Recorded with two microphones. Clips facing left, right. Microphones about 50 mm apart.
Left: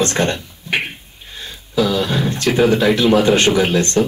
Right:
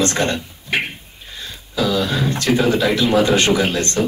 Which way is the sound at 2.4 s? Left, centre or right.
Left.